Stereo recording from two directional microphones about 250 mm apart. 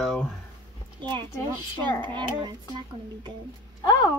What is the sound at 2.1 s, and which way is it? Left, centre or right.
Speech, centre.